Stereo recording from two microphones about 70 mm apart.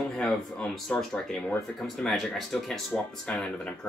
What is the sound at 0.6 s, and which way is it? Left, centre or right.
Speech, centre.